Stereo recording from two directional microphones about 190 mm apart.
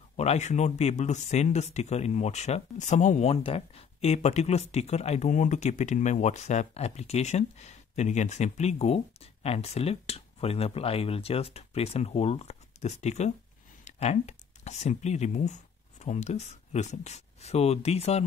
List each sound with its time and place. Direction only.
0.2 s speech: 35° left (ahead or behind)